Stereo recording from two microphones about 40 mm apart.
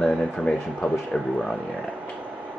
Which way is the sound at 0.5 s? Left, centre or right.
Left.